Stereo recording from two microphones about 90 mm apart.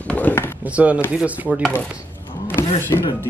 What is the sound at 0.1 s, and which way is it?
Chop, 20° left (ahead or behind).